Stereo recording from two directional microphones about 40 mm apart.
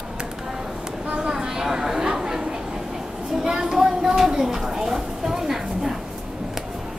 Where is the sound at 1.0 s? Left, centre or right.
Right.